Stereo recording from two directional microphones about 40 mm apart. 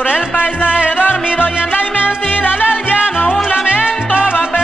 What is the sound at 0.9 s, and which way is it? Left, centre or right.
Music, left.